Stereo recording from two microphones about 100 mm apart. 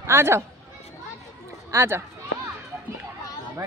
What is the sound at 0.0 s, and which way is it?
Speech, 25° right (ahead or behind).